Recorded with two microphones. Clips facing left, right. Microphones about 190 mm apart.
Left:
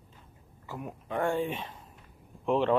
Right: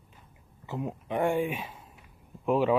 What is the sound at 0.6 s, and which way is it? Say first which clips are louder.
Speech: right 5 dB; 20° right (ahead or behind).